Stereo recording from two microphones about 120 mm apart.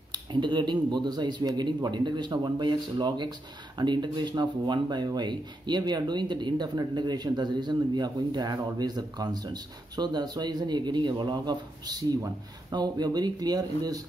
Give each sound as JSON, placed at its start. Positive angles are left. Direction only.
{"t": 0.1, "sound": "a man's voice", "side_deg": -40}